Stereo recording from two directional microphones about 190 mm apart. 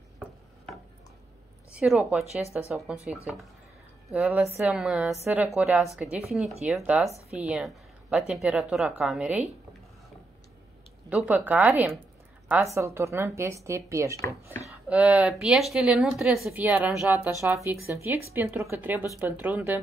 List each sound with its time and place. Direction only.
1.8 s a woman's voice: 5° right (ahead or behind)
4.1 s a woman's voice: 5° right (ahead or behind)
11.1 s a woman's voice: 10° right (ahead or behind)
17.3 s speech: 15° right (ahead or behind)